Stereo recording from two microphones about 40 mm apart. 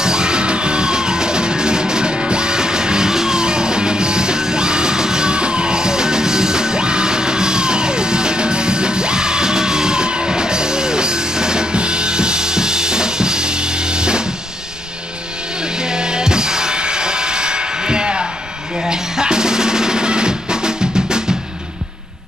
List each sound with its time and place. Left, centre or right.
0.0 s music: centre
15.8 s music: centre
18.8 s drum: centre